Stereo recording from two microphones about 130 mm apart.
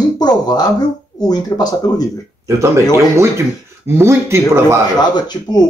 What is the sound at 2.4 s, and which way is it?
Speech, 20° right (ahead or behind).